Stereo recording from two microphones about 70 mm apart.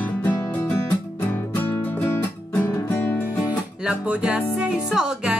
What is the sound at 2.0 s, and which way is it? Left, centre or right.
Music, left.